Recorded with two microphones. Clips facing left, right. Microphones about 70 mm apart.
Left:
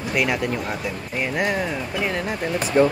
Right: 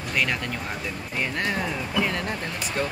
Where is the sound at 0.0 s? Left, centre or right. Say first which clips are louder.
Left 4 dB; centre.